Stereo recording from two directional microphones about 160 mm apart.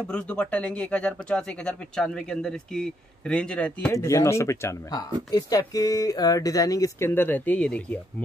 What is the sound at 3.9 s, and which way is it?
Speech, 20° left (ahead or behind).